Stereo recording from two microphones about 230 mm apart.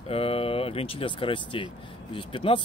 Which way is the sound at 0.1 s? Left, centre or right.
Left.